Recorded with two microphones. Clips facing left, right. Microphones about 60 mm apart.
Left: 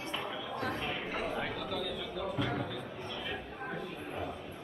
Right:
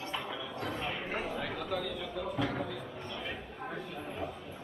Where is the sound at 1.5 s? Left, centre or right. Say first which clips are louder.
Right 1 dB; centre.